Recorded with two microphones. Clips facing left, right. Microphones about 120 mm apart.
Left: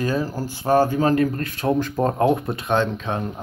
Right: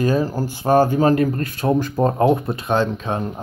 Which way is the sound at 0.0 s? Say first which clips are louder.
Right 4 dB; 15° right (ahead or behind).